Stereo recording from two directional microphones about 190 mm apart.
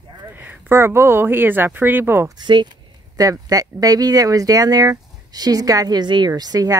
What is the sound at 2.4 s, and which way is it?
Speech, 25° right (ahead or behind).